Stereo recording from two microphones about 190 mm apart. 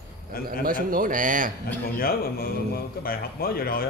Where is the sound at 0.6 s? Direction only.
45° right (ahead or behind).